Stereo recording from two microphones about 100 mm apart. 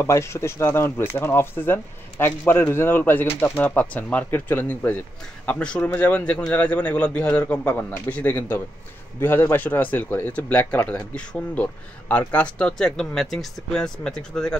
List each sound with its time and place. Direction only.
0.0 s speech: 25° left (ahead or behind); by 14.6 s 5° left (ahead or behind)